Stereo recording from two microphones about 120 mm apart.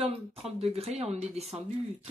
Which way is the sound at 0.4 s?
55° right (ahead or behind).